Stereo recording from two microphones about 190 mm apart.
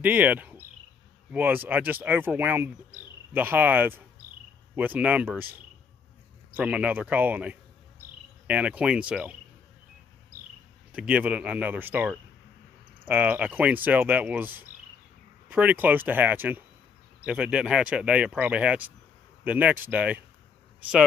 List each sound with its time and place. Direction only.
0.0 s speech: 10° right (ahead or behind)
6.5 s speech: 5° right (ahead or behind)
10.9 s speech: 5° right (ahead or behind)